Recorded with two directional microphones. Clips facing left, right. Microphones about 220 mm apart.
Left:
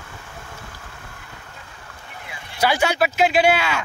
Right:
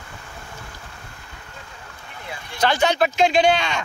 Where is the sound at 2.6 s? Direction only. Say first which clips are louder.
Even; 10° left (ahead or behind).